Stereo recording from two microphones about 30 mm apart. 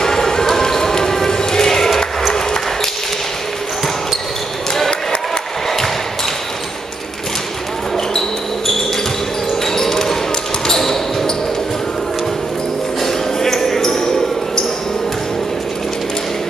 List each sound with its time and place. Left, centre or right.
0.0 s music: centre
2.3 s ping: centre
9.5 s basketball bounce: centre
13.0 s basketball bounce: centre